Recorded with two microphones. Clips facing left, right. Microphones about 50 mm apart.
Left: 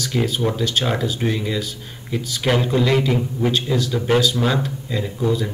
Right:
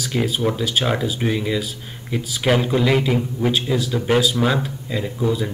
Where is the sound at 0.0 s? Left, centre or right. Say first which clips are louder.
Even; centre.